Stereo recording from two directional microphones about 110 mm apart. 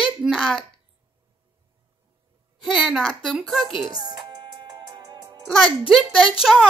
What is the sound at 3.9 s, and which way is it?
Music, 40° right (ahead or behind).